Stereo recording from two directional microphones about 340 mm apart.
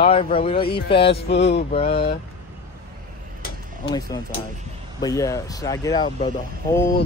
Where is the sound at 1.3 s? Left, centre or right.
Left.